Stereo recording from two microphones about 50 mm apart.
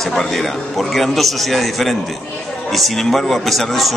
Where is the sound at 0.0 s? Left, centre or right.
Centre.